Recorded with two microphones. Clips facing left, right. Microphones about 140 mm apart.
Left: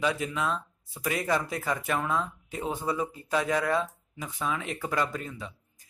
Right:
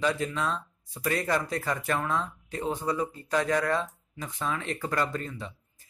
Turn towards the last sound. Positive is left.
turn(degrees=5)  # may be behind; listen again after turning